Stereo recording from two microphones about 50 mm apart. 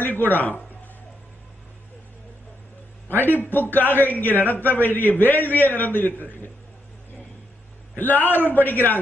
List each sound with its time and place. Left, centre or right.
0.0 s a man's voice: left
3.2 s a man's voice: left
8.0 s a man's voice: left